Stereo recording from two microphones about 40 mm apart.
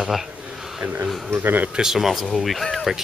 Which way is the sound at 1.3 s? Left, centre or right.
Right.